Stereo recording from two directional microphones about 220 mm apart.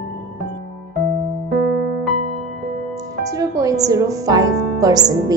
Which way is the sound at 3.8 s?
15° right (ahead or behind).